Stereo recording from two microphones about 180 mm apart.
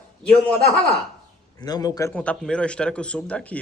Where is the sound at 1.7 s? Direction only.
20° left (ahead or behind).